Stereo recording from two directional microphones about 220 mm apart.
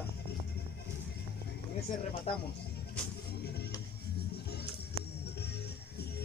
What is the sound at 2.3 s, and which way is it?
Speech, 25° left (ahead or behind).